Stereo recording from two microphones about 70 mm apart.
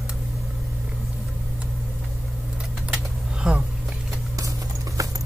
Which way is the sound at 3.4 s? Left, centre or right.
Centre.